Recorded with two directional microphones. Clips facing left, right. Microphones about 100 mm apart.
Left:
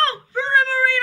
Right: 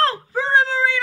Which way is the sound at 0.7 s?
15° right (ahead or behind).